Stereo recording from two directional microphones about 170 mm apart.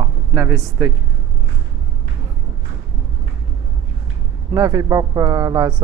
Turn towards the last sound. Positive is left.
turn(degrees=-20)  # may be behind; listen again after turning